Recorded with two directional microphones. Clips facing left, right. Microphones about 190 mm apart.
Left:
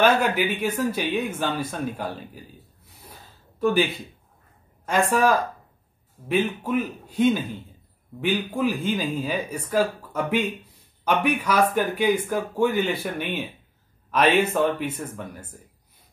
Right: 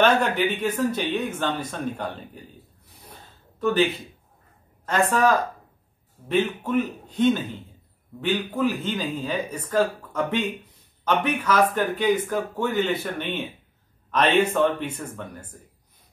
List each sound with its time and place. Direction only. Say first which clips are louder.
0.0 s speech: even; 10° left (ahead or behind)
3.1 s a sound: right 1 dB; 10° left (ahead or behind)
4.8 s speech: even; 10° left (ahead or behind)
8.5 s speech: left 1 dB; 10° left (ahead or behind)